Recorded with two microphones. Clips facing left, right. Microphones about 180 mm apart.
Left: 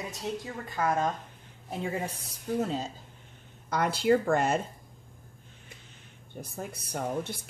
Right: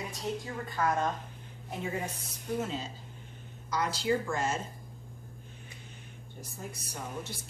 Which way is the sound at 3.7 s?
55° left (ahead or behind).